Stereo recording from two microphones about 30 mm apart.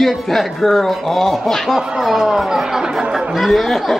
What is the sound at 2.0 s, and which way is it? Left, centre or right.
Speech, centre.